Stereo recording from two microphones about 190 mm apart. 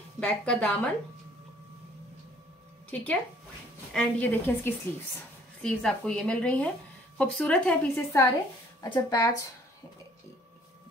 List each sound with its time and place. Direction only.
0.2 s speech: 5° left (ahead or behind)
2.9 s speech: 5° left (ahead or behind)
8.8 s speech: 20° left (ahead or behind)